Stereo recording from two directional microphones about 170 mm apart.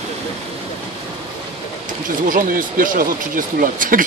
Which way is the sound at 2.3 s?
55° right (ahead or behind).